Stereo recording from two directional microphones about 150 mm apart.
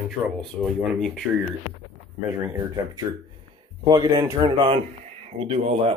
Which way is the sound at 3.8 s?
30° right (ahead or behind).